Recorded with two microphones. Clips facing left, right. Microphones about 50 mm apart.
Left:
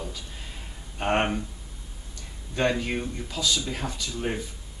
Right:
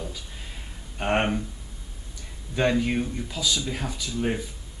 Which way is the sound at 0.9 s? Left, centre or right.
Centre.